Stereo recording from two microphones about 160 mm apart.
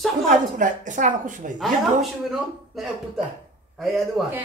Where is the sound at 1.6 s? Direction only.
Centre (ahead or behind).